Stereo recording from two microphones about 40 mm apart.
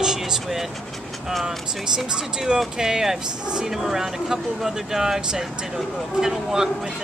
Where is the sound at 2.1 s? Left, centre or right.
Centre.